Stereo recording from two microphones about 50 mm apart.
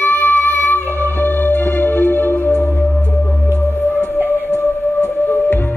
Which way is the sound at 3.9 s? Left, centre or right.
Left.